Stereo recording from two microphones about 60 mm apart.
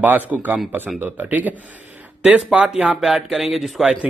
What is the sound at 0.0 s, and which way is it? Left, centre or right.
Speech, right.